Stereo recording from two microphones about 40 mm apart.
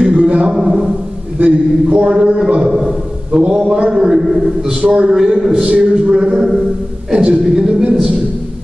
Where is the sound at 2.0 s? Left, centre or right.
Right.